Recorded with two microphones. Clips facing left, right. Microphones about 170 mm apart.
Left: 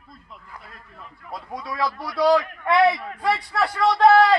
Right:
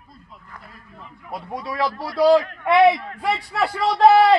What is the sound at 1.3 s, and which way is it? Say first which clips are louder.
A man's voice: right 3 dB; 30° right (ahead or behind).